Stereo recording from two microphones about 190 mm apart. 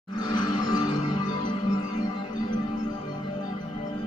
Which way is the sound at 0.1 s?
20° left (ahead or behind).